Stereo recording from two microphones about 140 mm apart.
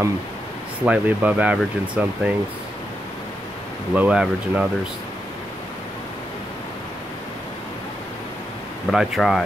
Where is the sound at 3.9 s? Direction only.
5° right (ahead or behind).